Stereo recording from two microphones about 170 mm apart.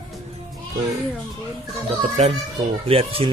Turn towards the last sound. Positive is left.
turn(degrees=-35)  # may be behind; listen again after turning